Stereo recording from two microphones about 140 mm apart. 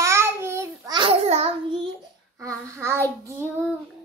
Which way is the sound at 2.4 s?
20° right (ahead or behind).